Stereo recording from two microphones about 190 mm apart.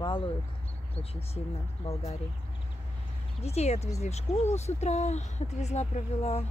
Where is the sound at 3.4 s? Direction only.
35° left (ahead or behind).